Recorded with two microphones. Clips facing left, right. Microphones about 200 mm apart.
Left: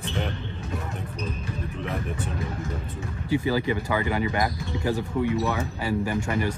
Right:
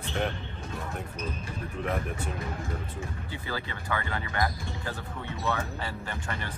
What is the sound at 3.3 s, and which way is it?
Speech, 15° left (ahead or behind).